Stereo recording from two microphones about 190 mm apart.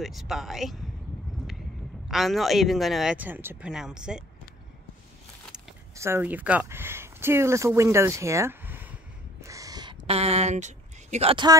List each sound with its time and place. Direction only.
0.0 s speech: centre (ahead or behind)
2.0 s speech: centre (ahead or behind)
5.9 s speech: 15° right (ahead or behind)
9.4 s a sound: 15° right (ahead or behind)